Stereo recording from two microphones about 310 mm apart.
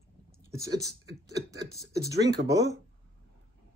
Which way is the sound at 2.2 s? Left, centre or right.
Right.